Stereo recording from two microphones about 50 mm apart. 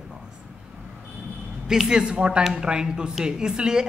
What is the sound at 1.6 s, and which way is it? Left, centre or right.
A man's voice, centre.